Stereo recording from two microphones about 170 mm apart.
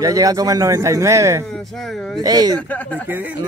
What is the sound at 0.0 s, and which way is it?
Speech, 20° right (ahead or behind).